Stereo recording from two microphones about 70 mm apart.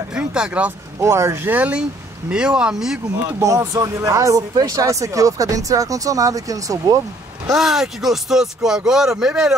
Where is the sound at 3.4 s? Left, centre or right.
Right.